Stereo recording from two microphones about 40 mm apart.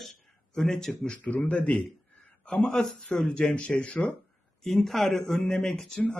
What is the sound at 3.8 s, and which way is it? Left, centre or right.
Speech, left.